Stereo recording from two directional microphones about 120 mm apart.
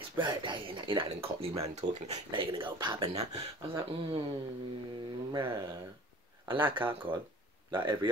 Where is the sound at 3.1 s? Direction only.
60° right (ahead or behind).